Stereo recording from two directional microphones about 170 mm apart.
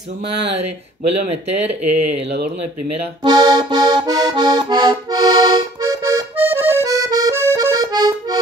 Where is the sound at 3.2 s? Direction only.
25° right (ahead or behind).